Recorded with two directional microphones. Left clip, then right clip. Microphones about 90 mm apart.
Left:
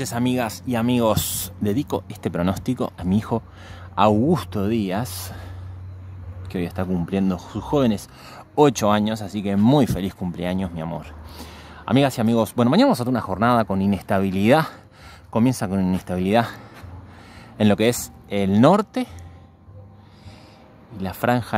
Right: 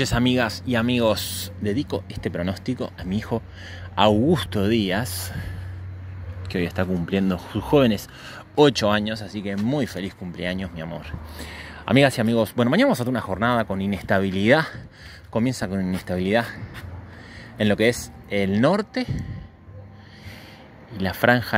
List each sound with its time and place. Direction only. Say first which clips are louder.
0.0 s speech: right 2 dB; centre (ahead or behind)
0.5 s speech: even; 15° left (ahead or behind)
0.9 s speech: left 3 dB; 40° left (ahead or behind)
3.9 s speech: even; 40° left (ahead or behind)
4.5 s speech: right 2 dB; 25° left (ahead or behind)
6.5 s speech: right 2 dB; 15° left (ahead or behind)
9.1 s speech: left 3 dB; 50° left (ahead or behind)
10.4 s speech: left 1 dB; 40° left (ahead or behind)
11.3 s whispering: right 3 dB; 10° left (ahead or behind)
12.1 s speech: left 1 dB; 15° left (ahead or behind)
12.4 s speech: left 3 dB; 35° left (ahead or behind)
16.2 s speech: left 2 dB; 35° left (ahead or behind)
17.6 s speech: left 1 dB; 35° left (ahead or behind)
21.0 s speech: right 3 dB; 20° left (ahead or behind)